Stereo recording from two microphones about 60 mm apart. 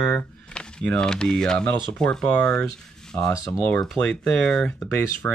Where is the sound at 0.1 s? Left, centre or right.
Centre.